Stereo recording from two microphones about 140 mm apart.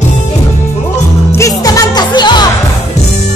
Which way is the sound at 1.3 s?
25° left (ahead or behind).